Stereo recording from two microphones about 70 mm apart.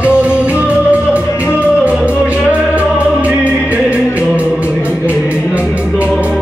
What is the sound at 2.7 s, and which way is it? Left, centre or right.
Music, centre.